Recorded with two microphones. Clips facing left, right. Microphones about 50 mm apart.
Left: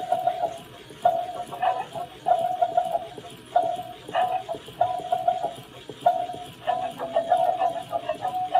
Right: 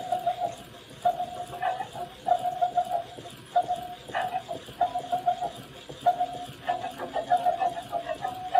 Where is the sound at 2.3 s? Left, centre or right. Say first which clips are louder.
Left 3 dB; left.